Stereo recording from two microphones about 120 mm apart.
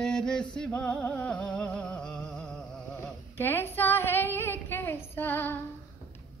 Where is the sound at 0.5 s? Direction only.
5° left (ahead or behind).